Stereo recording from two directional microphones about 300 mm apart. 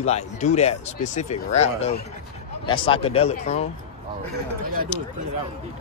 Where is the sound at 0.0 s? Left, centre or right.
Left.